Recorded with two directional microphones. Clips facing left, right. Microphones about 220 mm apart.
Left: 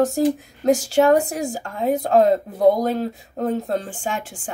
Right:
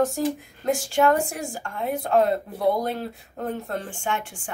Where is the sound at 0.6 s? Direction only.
40° left (ahead or behind).